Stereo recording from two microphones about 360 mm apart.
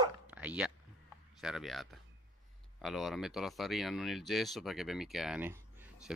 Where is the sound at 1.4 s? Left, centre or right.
Centre.